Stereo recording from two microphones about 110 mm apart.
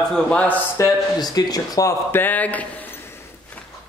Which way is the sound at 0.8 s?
30° left (ahead or behind).